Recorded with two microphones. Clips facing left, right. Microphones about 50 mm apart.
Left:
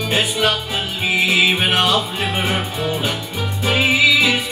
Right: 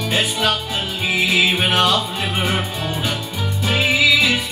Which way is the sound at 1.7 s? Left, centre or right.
Centre.